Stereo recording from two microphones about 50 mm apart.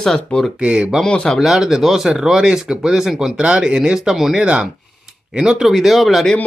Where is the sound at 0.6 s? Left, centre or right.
Centre.